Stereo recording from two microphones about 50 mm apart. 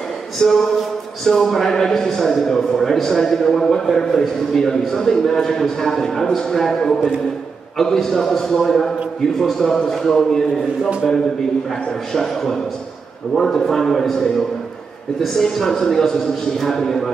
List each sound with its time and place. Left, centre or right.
0.4 s a man's voice: centre
12.1 s a man's voice: centre